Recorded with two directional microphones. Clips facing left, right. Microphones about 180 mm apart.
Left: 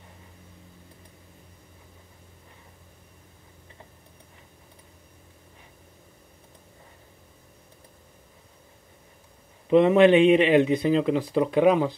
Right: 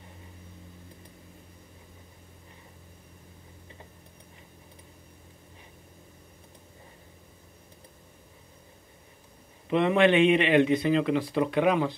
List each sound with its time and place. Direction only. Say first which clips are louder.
9.7 s speech: left 6 dB; 40° left (ahead or behind)